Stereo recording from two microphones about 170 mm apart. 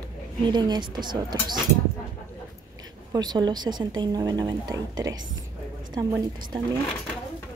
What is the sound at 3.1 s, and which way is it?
Speech, 25° right (ahead or behind).